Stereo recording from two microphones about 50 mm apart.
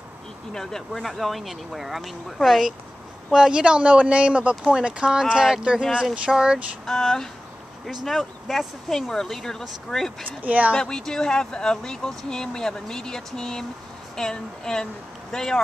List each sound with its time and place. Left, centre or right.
0.5 s speech: centre
3.3 s speech: centre
6.9 s speech: centre
10.4 s speech: right
10.8 s speech: centre